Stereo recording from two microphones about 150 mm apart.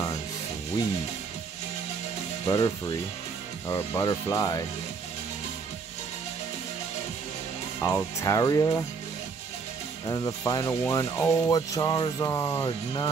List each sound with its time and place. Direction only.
2.4 s speech: 25° left (ahead or behind)
7.8 s speech: 20° left (ahead or behind)
10.0 s speech: 25° left (ahead or behind)